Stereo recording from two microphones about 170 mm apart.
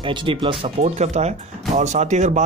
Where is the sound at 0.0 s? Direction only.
30° right (ahead or behind).